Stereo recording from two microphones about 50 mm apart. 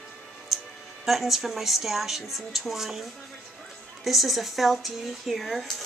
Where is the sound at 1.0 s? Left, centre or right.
Centre.